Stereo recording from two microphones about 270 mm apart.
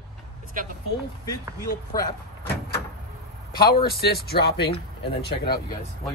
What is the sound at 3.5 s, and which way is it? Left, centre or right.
A man's voice, left.